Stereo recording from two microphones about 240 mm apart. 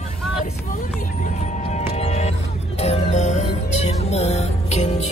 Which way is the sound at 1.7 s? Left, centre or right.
Left.